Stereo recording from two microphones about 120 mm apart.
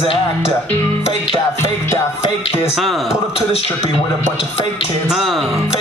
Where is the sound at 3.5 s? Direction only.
50° left (ahead or behind).